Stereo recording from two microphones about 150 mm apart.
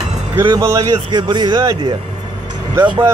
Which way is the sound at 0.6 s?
25° right (ahead or behind).